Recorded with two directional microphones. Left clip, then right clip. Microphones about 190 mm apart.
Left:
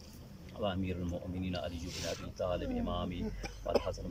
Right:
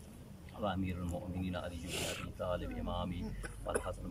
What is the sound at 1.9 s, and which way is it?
Speech, 55° right (ahead or behind).